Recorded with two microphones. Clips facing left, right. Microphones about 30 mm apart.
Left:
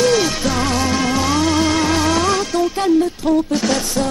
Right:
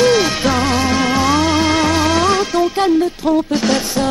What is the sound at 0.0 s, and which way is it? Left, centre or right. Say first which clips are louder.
Music: right 3 dB; centre.